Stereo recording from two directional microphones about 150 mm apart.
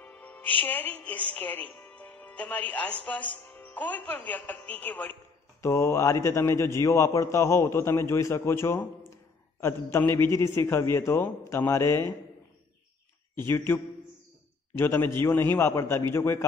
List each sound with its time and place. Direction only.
0.0 s a woman's voice: 10° left (ahead or behind)
14.8 s a man's voice: 15° left (ahead or behind)